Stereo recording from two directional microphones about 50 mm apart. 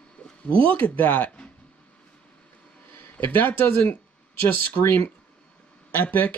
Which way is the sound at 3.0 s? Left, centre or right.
Left.